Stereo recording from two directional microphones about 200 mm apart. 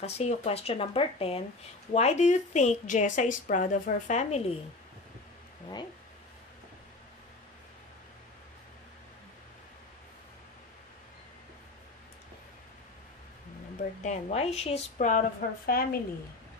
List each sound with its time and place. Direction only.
0.0 s a woman's voice: 30° left (ahead or behind)
14.0 s a woman's voice: 35° left (ahead or behind)